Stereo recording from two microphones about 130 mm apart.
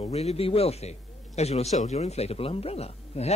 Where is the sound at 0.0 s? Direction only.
55° left (ahead or behind).